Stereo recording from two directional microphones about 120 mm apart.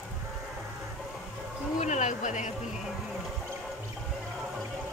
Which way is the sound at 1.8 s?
85° left.